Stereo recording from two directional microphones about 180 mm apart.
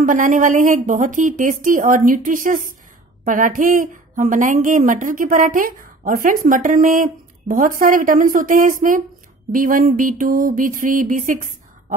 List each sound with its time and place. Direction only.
0.0 s a woman's voice: 45° right (ahead or behind)